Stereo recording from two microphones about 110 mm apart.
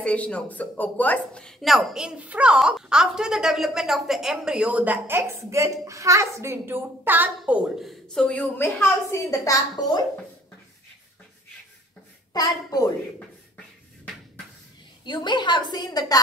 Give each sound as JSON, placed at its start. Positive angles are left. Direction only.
{"t": 0.0, "sound": "speech", "side_deg": 10}
{"t": 7.8, "sound": "speech", "side_deg": 5}
{"t": 8.5, "sound": "a woman's voice", "side_deg": 20}
{"t": 12.3, "sound": "a woman's voice", "side_deg": 35}
{"t": 15.0, "sound": "a woman's voice", "side_deg": 45}